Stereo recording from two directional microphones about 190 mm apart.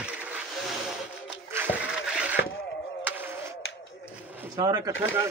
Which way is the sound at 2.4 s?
65° left (ahead or behind).